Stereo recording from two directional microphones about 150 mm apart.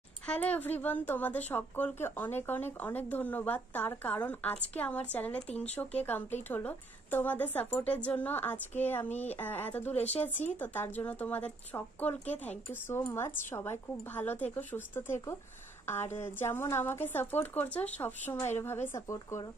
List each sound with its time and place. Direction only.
0.3 s a woman's voice: 10° left (ahead or behind)